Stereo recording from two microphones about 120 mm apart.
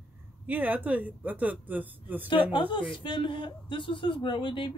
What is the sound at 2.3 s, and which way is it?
Speech, 45° left (ahead or behind).